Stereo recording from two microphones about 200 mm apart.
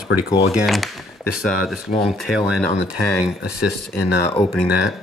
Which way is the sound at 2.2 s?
5° right (ahead or behind).